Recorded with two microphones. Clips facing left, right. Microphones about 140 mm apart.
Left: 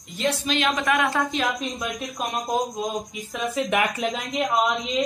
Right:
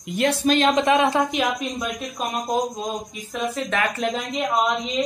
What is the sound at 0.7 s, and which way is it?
Speech, 20° right (ahead or behind).